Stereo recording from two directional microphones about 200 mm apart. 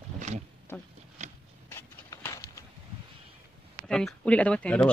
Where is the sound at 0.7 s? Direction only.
10° left (ahead or behind).